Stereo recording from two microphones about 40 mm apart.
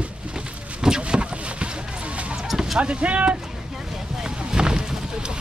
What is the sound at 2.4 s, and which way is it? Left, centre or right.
Vehicle, centre.